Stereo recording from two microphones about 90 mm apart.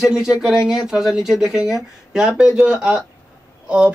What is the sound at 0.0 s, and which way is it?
Speech, 5° right (ahead or behind).